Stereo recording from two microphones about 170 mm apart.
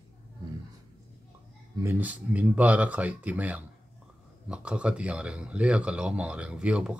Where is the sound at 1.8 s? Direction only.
10° right (ahead or behind).